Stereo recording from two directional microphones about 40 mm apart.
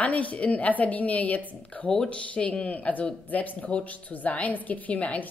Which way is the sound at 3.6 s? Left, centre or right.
Left.